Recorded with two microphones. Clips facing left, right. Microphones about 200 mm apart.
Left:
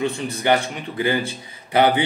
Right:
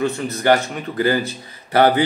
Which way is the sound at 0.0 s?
15° left (ahead or behind).